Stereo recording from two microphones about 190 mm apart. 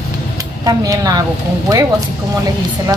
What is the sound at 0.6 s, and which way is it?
Speech, 20° right (ahead or behind).